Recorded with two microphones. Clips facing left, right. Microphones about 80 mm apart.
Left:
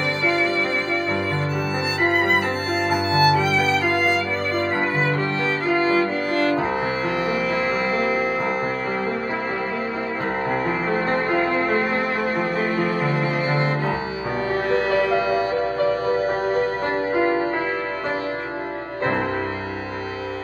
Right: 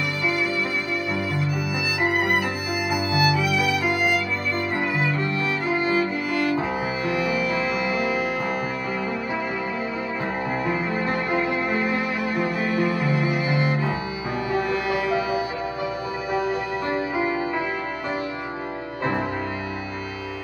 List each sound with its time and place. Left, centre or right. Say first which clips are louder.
2.0 s music: left 2 dB; left
10.7 s music: left 3 dB; left